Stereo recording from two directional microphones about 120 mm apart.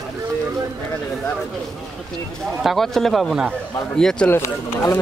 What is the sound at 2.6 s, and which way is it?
A man's voice, centre (ahead or behind).